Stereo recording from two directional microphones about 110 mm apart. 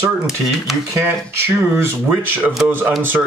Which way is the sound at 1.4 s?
20° right (ahead or behind).